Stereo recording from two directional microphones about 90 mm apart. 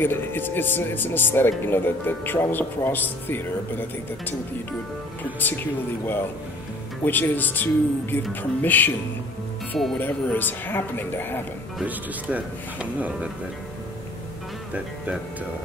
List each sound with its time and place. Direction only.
0.0 s speech: 25° left (ahead or behind)
5.4 s speech: 20° left (ahead or behind)
9.9 s speech: 20° left (ahead or behind)
11.8 s speech: 15° right (ahead or behind)